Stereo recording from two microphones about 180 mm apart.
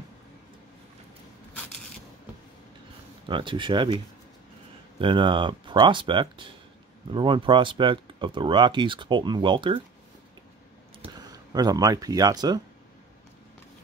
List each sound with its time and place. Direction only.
3.3 s speech: 25° right (ahead or behind)
11.0 s speech: 20° right (ahead or behind)